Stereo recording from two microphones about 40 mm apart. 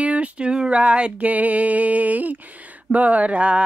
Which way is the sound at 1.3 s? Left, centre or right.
Right.